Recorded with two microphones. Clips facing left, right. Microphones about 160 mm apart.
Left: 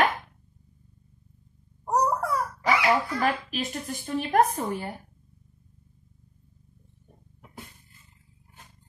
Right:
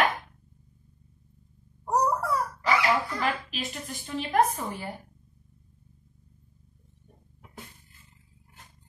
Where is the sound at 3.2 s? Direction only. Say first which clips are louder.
Left 3 dB; 45° left (ahead or behind).